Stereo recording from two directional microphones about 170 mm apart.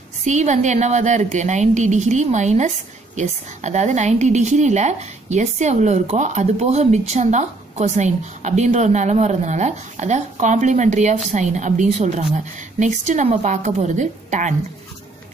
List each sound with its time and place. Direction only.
0.2 s a woman's voice: 45° right (ahead or behind)